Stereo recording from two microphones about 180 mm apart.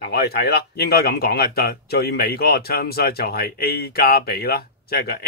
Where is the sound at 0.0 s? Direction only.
65° left (ahead or behind).